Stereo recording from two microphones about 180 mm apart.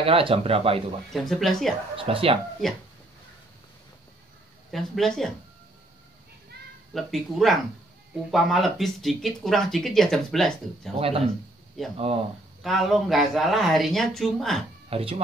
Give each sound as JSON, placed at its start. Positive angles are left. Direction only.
{"t": 0.0, "sound": "speech", "side_deg": -30}
{"t": 1.1, "sound": "speech", "side_deg": 0}
{"t": 2.0, "sound": "speech", "side_deg": -30}
{"t": 4.6, "sound": "speech", "side_deg": 0}
{"t": 6.9, "sound": "speech", "side_deg": 0}
{"t": 11.0, "sound": "speech", "side_deg": -30}
{"t": 11.8, "sound": "speech", "side_deg": 0}
{"t": 14.9, "sound": "speech", "side_deg": -30}